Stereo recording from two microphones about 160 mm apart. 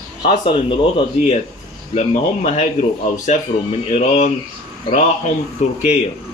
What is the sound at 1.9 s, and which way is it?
Speech, 50° left (ahead or behind).